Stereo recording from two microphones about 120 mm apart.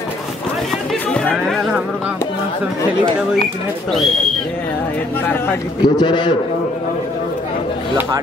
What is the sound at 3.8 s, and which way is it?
Speech, centre (ahead or behind).